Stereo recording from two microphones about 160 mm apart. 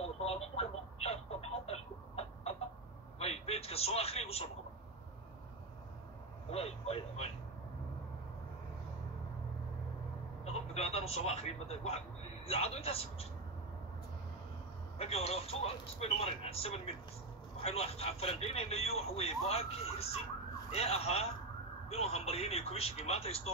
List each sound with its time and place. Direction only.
0.0 s radio: 40° left (ahead or behind)
3.2 s a sound: 40° left (ahead or behind)
6.5 s speech: 40° left (ahead or behind)
10.4 s a sound: 40° left (ahead or behind)
12.4 s speech: 40° left (ahead or behind)
15.0 s speech: 40° left (ahead or behind)